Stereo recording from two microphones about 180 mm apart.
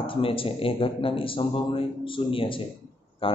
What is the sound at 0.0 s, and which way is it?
A man's voice, 30° left (ahead or behind).